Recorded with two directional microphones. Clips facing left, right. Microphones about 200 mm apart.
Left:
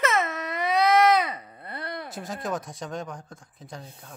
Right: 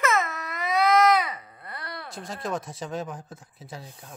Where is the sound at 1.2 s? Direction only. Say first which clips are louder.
Left 2 dB; 25° left (ahead or behind).